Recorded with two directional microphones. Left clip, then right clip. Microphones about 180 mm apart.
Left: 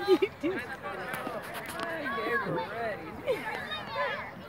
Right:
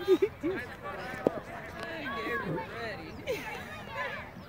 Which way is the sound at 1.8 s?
10° left (ahead or behind).